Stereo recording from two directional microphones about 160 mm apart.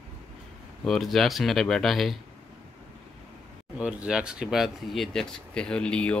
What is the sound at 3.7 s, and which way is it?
Speech, 5° right (ahead or behind).